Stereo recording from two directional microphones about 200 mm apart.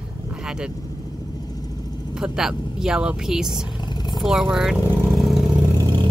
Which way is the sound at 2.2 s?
Centre (ahead or behind).